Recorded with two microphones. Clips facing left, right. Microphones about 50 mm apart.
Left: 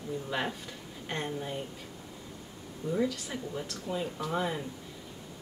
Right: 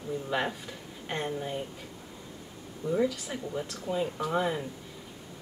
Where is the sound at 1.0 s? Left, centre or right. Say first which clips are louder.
Right 2 dB; centre.